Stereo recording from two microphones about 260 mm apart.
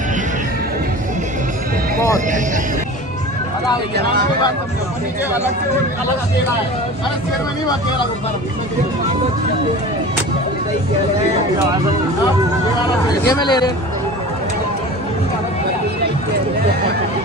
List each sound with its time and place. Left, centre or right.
13.3 s speech: centre